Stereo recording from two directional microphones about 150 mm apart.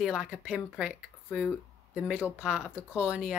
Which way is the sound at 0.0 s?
5° right (ahead or behind).